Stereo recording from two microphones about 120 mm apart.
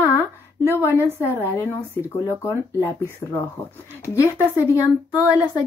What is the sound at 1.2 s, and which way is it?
Speech, 20° left (ahead or behind).